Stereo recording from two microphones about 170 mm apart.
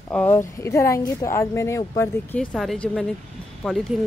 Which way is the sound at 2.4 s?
5° left (ahead or behind).